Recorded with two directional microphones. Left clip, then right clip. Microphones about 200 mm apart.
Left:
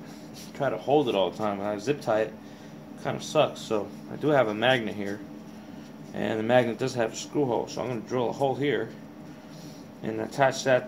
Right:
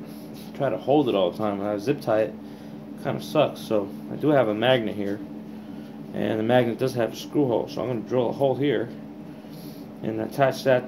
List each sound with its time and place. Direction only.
0.6 s speech: 15° right (ahead or behind)
6.1 s speech: 15° right (ahead or behind)
10.0 s speech: 20° right (ahead or behind)